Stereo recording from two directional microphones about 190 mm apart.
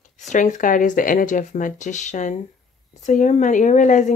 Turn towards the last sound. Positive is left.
turn(degrees=40)  # may be behind; listen again after turning